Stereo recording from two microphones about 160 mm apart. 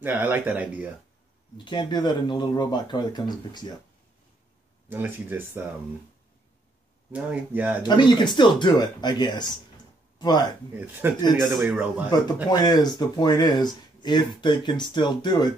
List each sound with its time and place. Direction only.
0.0 s speech: 10° right (ahead or behind)
1.6 s speech: 30° left (ahead or behind)
4.8 s speech: 10° right (ahead or behind)
7.1 s speech: 10° right (ahead or behind)
7.8 s speech: 30° left (ahead or behind)
10.7 s speech: 10° right (ahead or behind)
12.4 s speech: 25° left (ahead or behind)